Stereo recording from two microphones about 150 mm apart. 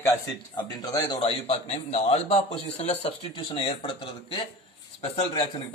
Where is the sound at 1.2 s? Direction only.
40° left (ahead or behind).